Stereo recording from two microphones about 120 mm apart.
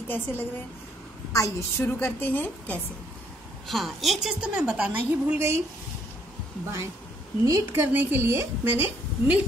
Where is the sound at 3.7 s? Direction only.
Centre (ahead or behind); by 5.6 s 20° right (ahead or behind).